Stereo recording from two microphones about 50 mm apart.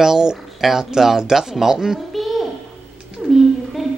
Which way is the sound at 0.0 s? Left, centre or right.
Centre.